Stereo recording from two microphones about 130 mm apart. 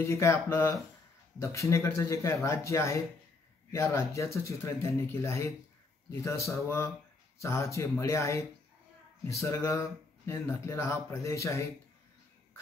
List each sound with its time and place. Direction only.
0.0 s speech: 20° left (ahead or behind)